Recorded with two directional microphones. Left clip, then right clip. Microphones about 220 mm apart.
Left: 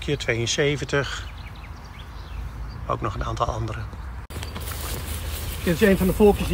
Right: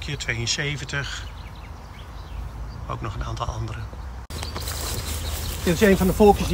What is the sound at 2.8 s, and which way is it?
Speech, 5° right (ahead or behind).